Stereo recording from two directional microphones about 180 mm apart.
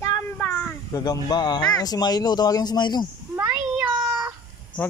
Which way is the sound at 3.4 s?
5° right (ahead or behind).